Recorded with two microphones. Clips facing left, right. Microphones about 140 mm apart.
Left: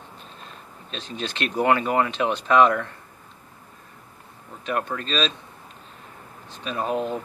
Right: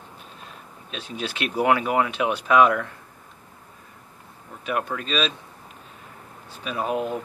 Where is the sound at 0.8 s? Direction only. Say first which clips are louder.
Even; 10° right (ahead or behind).